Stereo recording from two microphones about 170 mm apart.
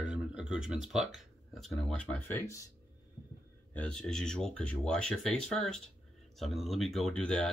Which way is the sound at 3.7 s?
10° left (ahead or behind).